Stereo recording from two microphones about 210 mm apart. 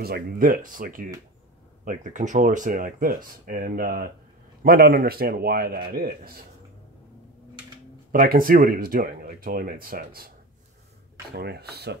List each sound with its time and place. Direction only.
0.0 s speech: 45° right (ahead or behind)
8.1 s speech: 45° right (ahead or behind)
11.3 s speech: 50° right (ahead or behind)